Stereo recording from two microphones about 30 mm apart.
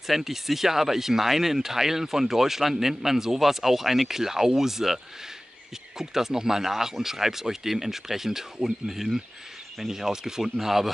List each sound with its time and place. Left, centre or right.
0.0 s speech: centre